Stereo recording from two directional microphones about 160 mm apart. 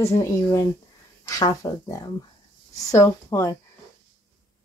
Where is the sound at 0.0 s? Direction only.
20° left (ahead or behind).